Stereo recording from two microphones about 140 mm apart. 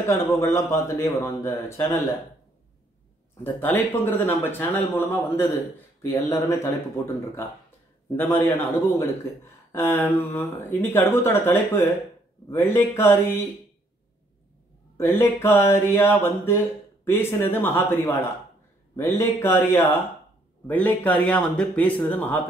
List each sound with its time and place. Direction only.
0.0 s speech: 20° left (ahead or behind)
3.6 s speech: 15° left (ahead or behind)
8.2 s speech: 15° left (ahead or behind)
15.0 s speech: 15° left (ahead or behind)